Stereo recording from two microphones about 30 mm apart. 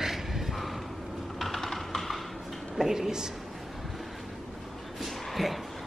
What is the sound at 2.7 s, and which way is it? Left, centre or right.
Speech, centre.